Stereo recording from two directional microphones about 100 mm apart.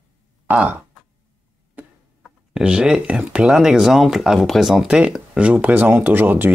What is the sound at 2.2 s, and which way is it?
Speech, 5° right (ahead or behind).